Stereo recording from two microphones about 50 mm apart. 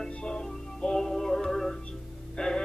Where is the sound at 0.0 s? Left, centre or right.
Centre.